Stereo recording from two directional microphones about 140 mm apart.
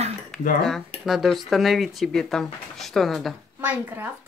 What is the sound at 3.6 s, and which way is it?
Speech, 10° right (ahead or behind).